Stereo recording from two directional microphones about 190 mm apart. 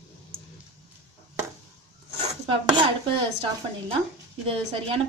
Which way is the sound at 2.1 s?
30° right (ahead or behind).